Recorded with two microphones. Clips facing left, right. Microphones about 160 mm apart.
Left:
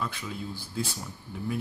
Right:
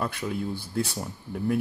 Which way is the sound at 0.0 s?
60° right (ahead or behind).